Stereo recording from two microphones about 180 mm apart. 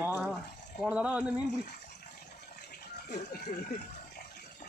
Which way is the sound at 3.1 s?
55° left (ahead or behind).